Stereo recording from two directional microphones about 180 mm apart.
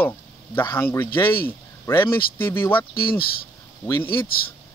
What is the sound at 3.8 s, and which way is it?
Speech, 25° left (ahead or behind).